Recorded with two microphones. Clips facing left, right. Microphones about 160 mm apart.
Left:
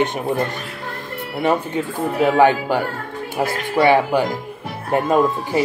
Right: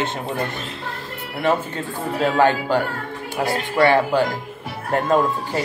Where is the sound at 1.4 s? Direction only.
15° left (ahead or behind).